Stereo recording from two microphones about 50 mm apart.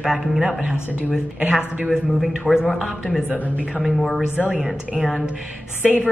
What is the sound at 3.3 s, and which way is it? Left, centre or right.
Speech, right.